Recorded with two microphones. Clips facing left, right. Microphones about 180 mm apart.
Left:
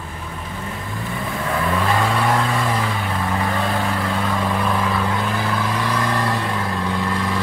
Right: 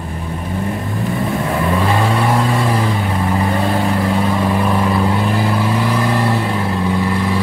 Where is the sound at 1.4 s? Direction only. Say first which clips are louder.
Right 1 dB; 25° right (ahead or behind).